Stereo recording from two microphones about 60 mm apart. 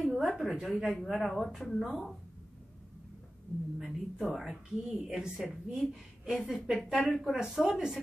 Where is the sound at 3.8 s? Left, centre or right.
Centre.